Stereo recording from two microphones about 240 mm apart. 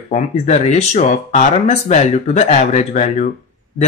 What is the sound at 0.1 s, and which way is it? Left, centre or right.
Speech, left.